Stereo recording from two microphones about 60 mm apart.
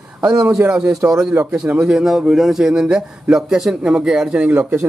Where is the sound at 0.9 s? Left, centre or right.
Right.